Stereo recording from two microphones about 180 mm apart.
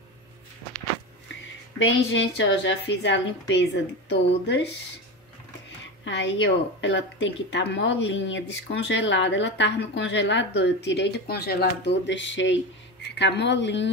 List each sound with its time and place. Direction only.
1.8 s a woman's voice: 90° left; by 4.6 s 75° left (ahead or behind)
6.0 s a woman's voice: 90° left
13.1 s speech: 75° left (ahead or behind)